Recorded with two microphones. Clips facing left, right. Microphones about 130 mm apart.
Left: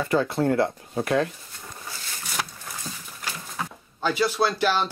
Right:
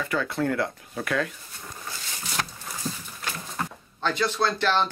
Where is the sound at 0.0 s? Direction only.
35° left (ahead or behind).